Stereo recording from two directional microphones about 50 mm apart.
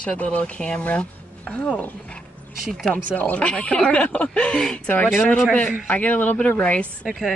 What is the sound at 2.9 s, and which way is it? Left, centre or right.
Speech, left.